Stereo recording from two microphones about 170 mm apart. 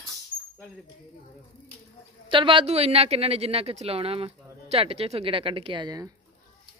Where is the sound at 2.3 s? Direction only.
30° right (ahead or behind).